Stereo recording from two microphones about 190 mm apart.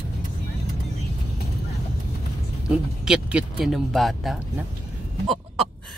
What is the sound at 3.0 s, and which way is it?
Speech, 5° right (ahead or behind).